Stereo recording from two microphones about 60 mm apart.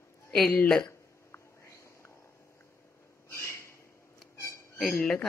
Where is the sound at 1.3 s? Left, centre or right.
Left.